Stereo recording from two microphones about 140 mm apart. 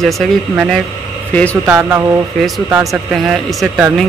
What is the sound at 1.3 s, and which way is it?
Speech, 10° left (ahead or behind).